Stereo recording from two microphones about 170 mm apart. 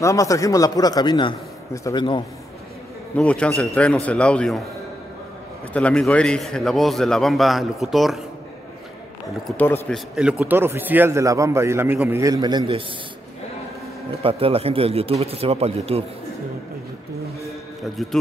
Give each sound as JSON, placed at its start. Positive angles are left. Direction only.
{"t": 0.0, "sound": "a man's voice", "side_deg": 20}
{"t": 3.2, "sound": "a man's voice", "side_deg": 5}
{"t": 5.7, "sound": "a man's voice", "side_deg": 5}
{"t": 9.6, "sound": "a man's voice", "side_deg": 5}
{"t": 10.4, "sound": "a man's voice", "side_deg": -15}
{"t": 14.2, "sound": "a man's voice", "side_deg": -35}